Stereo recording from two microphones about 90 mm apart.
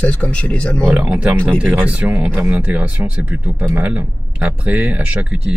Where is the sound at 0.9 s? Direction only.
15° right (ahead or behind).